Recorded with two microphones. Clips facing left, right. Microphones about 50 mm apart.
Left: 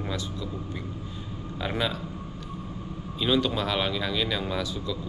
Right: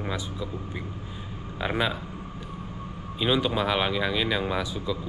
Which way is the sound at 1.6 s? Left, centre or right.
Centre.